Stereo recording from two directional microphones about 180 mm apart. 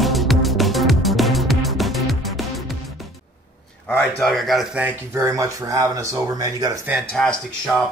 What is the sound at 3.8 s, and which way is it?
Speech, 5° left (ahead or behind).